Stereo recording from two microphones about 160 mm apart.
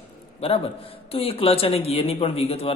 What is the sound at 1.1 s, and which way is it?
A man's voice, 35° left (ahead or behind).